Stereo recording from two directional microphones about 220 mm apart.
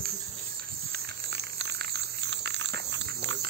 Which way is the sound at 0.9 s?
50° right (ahead or behind).